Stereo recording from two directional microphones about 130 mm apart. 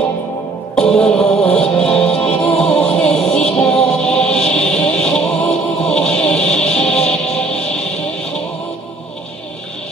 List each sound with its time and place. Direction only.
0.7 s music: 5° left (ahead or behind)